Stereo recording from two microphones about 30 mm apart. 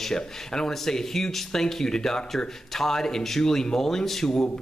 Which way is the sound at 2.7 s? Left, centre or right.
Centre.